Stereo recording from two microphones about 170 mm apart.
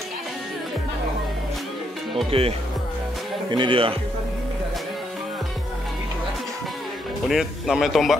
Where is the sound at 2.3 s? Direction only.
35° right (ahead or behind).